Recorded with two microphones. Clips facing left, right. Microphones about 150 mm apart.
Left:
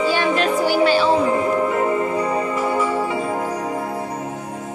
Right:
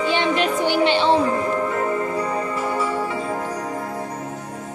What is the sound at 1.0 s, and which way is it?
Music, 10° left (ahead or behind).